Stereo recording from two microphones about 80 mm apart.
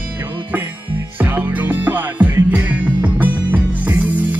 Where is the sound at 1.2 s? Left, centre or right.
Right.